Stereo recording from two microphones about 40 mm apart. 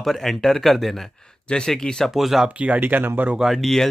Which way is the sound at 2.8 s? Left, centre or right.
Right.